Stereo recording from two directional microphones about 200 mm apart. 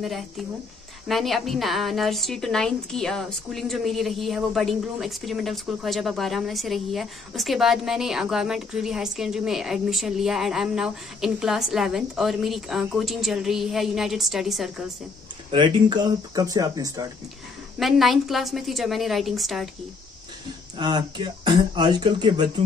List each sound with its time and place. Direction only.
1.0 s a woman's voice: centre (ahead or behind)
15.5 s speech: 25° right (ahead or behind)
17.7 s a woman's voice: centre (ahead or behind)
20.7 s speech: 20° right (ahead or behind)